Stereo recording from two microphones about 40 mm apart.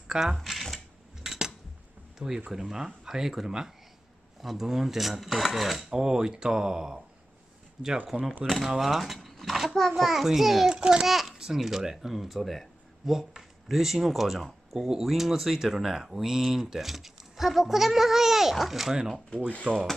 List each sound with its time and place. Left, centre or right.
0.1 s speech: centre
0.4 s a sound: centre
1.2 s cutlery: centre
2.1 s speech: centre
5.9 s speech: centre
8.1 s a child's voice: centre
10.7 s a child's voice: centre
11.1 s a child's voice: centre
13.1 s speech: centre
19.7 s a child's voice: right